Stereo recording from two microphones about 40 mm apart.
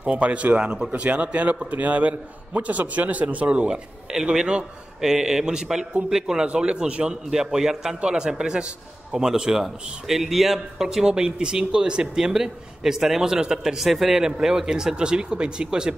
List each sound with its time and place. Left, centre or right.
0.1 s a man's voice: right; by 6.4 s centre
6.4 s a man's voice: right
9.1 s a man's voice: centre
11.1 s a man's voice: centre